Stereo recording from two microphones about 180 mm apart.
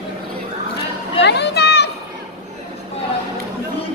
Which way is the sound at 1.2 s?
70° left (ahead or behind).